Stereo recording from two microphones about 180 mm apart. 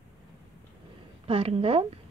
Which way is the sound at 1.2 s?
35° right (ahead or behind).